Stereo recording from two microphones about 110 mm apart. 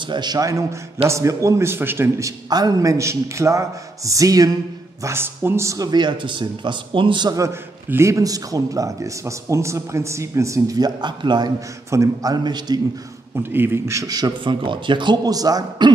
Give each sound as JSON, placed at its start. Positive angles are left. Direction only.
{"t": 0.0, "sound": "a man's voice", "side_deg": -40}
{"t": 5.0, "sound": "speech", "side_deg": -20}
{"t": 7.3, "sound": "a man's voice", "side_deg": -25}
{"t": 13.4, "sound": "speech", "side_deg": -20}